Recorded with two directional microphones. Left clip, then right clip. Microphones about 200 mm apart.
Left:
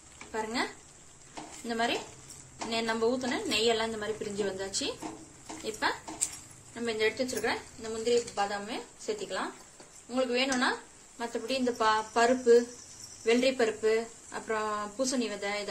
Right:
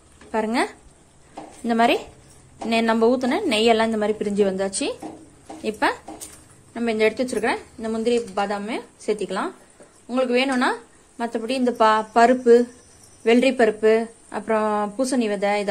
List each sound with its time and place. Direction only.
0.3 s speech: 45° right (ahead or behind)
1.7 s speech: 45° right (ahead or behind)